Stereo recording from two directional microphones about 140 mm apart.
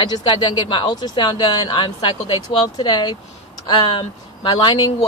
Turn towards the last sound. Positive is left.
turn(degrees=35)  # may be behind; listen again after turning